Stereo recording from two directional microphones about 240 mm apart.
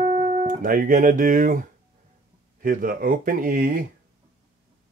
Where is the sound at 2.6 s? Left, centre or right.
Right.